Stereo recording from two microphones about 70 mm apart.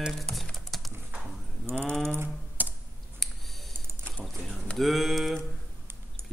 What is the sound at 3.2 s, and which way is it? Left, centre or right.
Clicking, centre.